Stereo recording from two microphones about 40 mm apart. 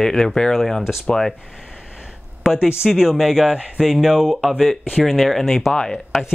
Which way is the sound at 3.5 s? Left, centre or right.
Right.